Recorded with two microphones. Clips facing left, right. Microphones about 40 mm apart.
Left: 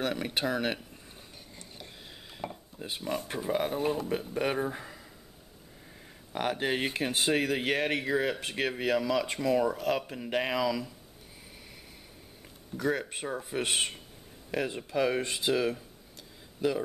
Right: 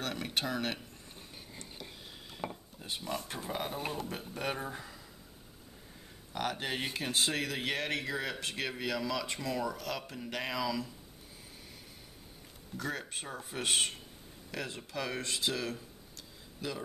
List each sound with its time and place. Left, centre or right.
0.0 s speech: centre
2.3 s dishes: centre
2.8 s speech: centre
6.5 s speech: centre
12.7 s speech: centre